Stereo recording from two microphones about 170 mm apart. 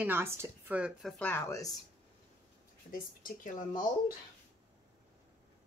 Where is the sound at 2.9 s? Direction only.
50° left (ahead or behind).